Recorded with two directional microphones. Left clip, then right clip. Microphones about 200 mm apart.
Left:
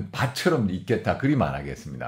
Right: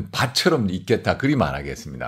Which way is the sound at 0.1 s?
30° right (ahead or behind).